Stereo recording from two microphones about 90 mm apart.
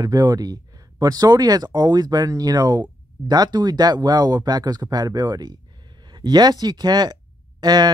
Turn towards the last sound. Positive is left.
turn(degrees=-50)  # may be behind; listen again after turning